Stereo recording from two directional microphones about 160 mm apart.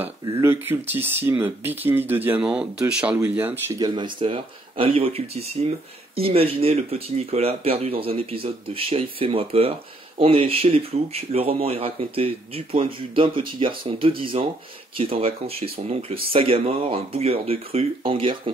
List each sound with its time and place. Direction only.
0.0 s speech: 15° right (ahead or behind)
3.8 s speech: 30° right (ahead or behind)